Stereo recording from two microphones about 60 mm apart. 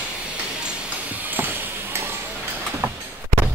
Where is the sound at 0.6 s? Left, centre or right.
Right.